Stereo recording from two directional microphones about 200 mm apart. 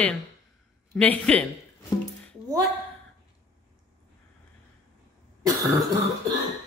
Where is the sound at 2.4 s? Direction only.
15° right (ahead or behind).